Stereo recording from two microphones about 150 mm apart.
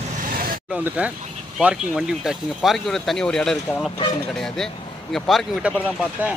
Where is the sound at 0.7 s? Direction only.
10° right (ahead or behind).